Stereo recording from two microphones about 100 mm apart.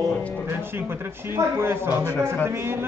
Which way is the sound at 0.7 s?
25° right (ahead or behind).